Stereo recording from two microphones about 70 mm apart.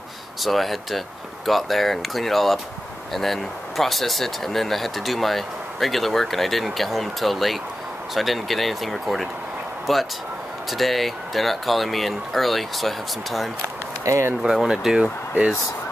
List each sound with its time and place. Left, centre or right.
0.4 s speech: centre
14.0 s speech: right
14.4 s speech: centre